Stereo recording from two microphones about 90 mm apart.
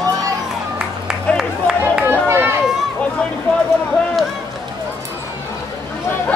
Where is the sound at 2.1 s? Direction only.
25° right (ahead or behind).